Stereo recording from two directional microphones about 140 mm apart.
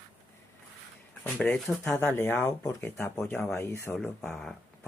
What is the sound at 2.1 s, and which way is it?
Speech, 15° left (ahead or behind).